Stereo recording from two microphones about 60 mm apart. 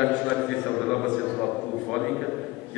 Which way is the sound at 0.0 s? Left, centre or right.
Centre.